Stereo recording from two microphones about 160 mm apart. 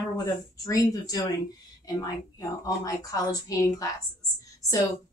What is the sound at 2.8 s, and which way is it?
A woman's voice, 20° left (ahead or behind).